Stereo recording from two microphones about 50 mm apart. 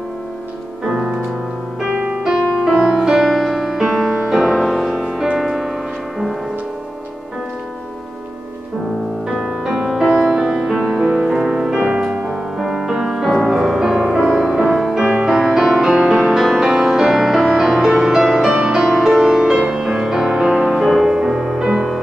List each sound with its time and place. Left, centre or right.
0.8 s music: centre
1.9 s music: right
2.8 s music: centre
9.4 s music: centre
11.1 s music: centre
12.5 s music: centre
15.0 s music: centre
20.8 s music: centre